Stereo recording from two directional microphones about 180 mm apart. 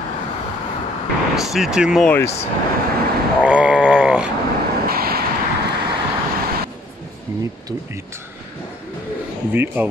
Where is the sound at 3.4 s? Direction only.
5° right (ahead or behind).